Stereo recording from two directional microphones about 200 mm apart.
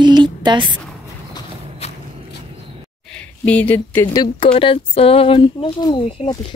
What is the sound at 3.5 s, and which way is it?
Speech, 10° left (ahead or behind).